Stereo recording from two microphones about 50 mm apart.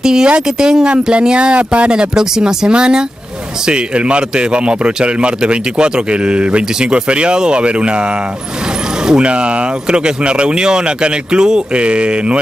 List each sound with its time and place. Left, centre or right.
0.0 s speech: centre
9.0 s speech: centre